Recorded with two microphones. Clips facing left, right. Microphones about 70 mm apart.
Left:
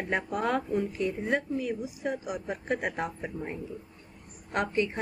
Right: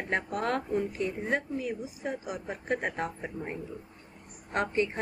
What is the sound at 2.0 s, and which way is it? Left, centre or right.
A woman's voice, centre.